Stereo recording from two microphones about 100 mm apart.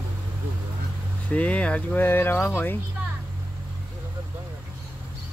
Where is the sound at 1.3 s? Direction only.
15° left (ahead or behind).